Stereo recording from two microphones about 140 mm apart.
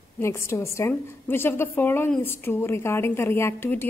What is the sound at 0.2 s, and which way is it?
A woman's voice, 20° left (ahead or behind).